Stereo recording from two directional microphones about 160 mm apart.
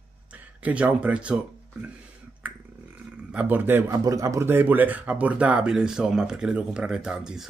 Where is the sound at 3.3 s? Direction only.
10° right (ahead or behind).